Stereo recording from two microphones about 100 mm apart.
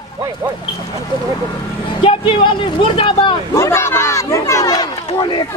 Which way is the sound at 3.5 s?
25° left (ahead or behind).